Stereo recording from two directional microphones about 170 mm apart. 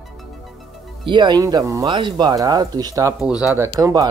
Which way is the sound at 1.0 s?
25° right (ahead or behind).